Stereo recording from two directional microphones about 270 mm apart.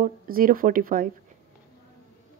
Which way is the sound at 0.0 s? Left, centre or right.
Right.